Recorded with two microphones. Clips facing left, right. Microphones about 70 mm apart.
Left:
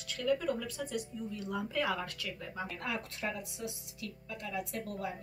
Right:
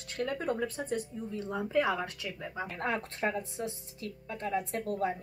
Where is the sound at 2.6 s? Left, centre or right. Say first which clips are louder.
Right 5 dB; right.